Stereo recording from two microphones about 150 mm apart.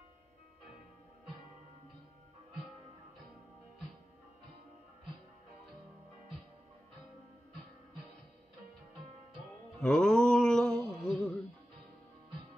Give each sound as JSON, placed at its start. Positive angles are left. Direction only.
{"t": 9.8, "sound": "music", "side_deg": 5}